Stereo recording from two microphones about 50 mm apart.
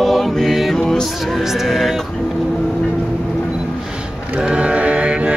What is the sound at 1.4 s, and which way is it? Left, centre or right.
Music, centre.